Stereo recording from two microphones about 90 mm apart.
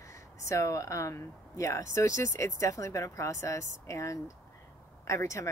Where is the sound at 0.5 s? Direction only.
35° left (ahead or behind).